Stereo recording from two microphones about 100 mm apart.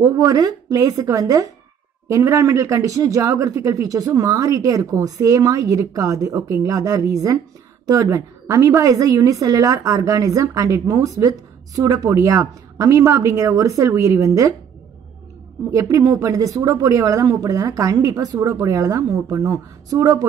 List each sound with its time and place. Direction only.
0.0 s a woman's voice: 35° right (ahead or behind)
15.7 s a woman's voice: 30° right (ahead or behind)